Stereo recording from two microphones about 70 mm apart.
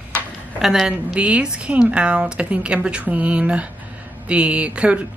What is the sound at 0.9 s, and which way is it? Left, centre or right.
Speech, centre.